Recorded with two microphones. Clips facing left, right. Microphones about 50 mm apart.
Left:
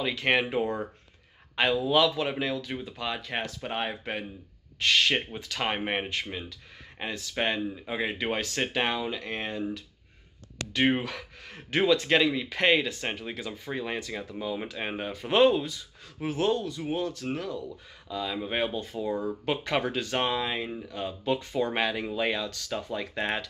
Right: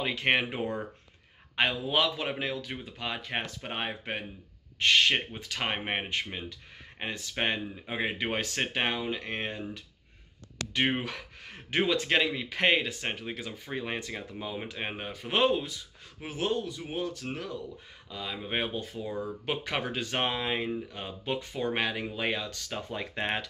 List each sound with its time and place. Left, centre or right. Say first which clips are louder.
0.0 s speech: left 1 dB; centre
11.0 s speech: left 2 dB; centre
20.0 s speech: left 3 dB; centre